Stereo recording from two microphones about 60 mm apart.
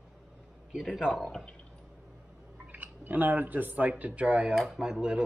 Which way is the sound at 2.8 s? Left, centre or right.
Right.